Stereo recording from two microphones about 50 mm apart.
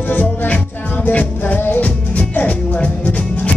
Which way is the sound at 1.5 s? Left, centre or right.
Left.